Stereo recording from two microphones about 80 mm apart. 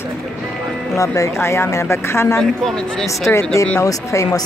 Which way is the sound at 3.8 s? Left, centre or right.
Left.